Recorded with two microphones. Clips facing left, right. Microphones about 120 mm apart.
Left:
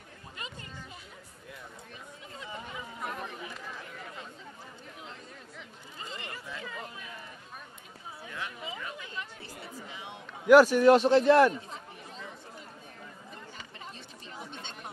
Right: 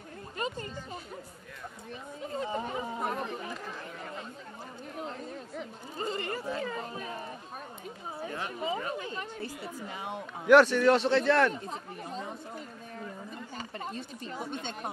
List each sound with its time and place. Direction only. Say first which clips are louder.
0.4 s music: right 10 dB; 45° right (ahead or behind)
2.3 s chatter: right 9 dB; 40° right (ahead or behind)
4.9 s speech: right 12 dB; 45° right (ahead or behind)
10.4 s a man's voice: left 2 dB; 5° left (ahead or behind)
11.7 s chatter: right 6 dB; 40° right (ahead or behind)
13.6 s chatter: right 8 dB; 45° right (ahead or behind)